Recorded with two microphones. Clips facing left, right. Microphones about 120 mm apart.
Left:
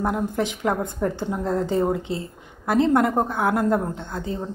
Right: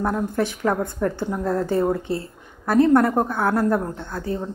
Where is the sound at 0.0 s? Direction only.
15° left (ahead or behind).